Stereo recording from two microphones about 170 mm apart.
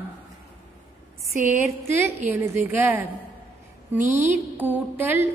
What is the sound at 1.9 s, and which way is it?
A woman's voice, 15° right (ahead or behind).